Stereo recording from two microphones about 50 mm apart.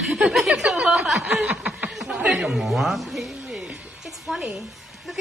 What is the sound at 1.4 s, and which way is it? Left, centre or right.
Snicker, centre.